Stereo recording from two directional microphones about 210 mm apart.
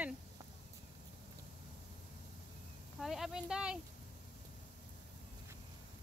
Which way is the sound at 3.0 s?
Centre (ahead or behind).